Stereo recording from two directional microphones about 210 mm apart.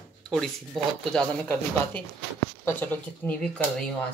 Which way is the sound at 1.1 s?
5° left (ahead or behind).